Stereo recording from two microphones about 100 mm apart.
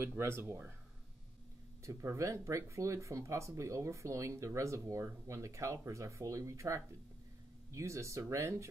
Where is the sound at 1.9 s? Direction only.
30° right (ahead or behind).